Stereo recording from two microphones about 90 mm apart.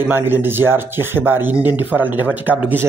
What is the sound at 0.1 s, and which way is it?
Speech, 25° right (ahead or behind).